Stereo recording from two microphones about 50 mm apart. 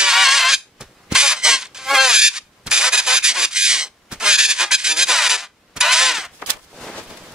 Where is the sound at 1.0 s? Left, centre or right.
Centre.